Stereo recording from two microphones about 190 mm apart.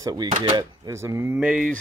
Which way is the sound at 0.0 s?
20° right (ahead or behind).